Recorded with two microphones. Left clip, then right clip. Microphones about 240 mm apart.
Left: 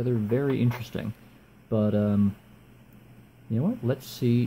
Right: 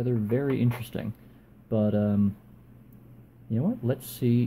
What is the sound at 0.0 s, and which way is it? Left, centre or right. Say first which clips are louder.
Speech: left 1 dB; centre.